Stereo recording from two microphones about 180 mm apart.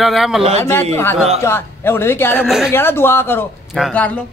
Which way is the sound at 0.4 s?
35° right (ahead or behind).